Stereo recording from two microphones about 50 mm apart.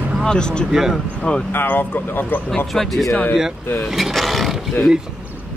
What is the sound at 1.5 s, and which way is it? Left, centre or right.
A man's voice, left.